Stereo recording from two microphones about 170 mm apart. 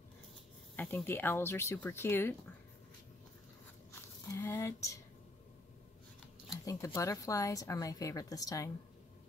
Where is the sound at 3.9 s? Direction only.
15° left (ahead or behind).